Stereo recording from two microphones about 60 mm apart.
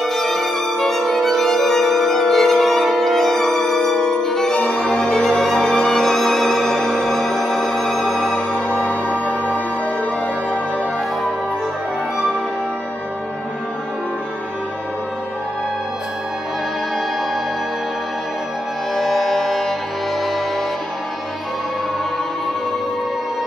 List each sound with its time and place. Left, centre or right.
0.0 s violin: centre
4.6 s music: centre
8.5 s music: left
18.9 s music: centre